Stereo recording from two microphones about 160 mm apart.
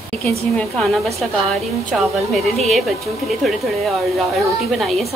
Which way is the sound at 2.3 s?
Centre (ahead or behind).